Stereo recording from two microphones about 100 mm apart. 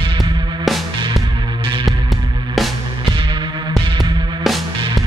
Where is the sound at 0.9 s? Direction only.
50° right (ahead or behind).